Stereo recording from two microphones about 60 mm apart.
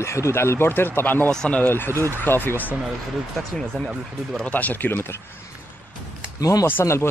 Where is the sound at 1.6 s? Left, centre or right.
Left.